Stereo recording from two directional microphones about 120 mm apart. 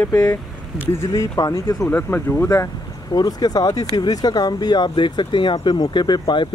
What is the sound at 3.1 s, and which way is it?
Speech, 35° left (ahead or behind).